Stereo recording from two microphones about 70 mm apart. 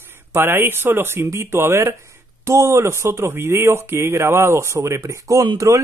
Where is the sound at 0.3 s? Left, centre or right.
Right.